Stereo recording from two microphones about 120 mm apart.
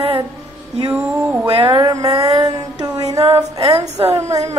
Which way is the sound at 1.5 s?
40° right (ahead or behind).